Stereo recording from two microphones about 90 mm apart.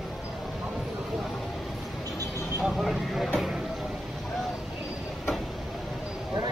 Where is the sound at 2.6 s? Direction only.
Centre (ahead or behind).